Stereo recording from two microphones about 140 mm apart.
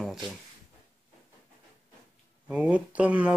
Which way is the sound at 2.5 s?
10° right (ahead or behind).